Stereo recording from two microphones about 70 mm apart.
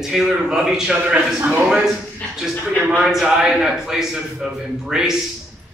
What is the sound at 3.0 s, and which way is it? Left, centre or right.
A man's voice, centre.